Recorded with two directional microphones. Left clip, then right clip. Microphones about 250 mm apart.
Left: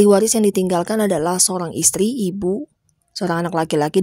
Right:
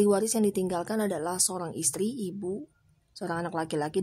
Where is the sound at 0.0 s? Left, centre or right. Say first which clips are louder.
Left 11 dB; left.